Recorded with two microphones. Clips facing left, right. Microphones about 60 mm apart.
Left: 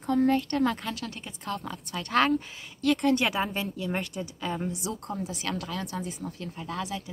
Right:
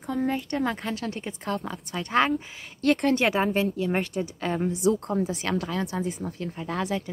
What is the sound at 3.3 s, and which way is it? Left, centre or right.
A woman's voice, right.